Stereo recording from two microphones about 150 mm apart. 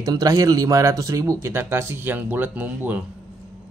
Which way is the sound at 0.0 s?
25° right (ahead or behind).